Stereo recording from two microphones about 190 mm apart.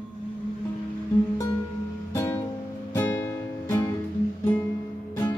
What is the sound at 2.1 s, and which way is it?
Music, 10° left (ahead or behind).